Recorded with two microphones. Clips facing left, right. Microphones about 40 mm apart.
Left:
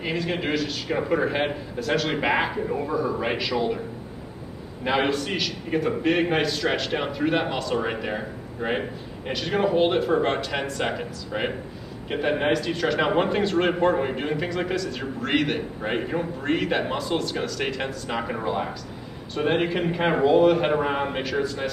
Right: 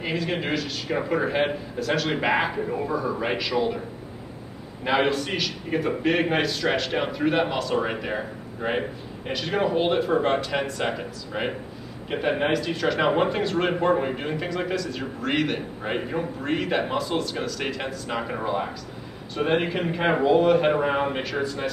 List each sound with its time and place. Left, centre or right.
0.0 s a man's voice: centre
4.8 s a man's voice: centre